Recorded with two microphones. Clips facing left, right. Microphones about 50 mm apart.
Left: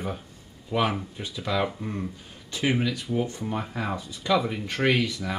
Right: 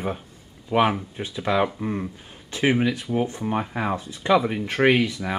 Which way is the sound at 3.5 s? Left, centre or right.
Right.